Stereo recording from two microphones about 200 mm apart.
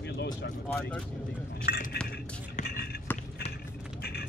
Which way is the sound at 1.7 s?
50° left (ahead or behind).